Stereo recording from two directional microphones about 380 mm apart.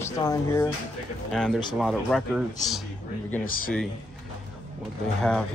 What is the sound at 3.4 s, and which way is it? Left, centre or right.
Speech, left.